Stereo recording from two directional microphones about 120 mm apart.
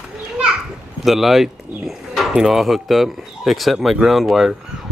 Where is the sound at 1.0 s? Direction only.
Centre (ahead or behind).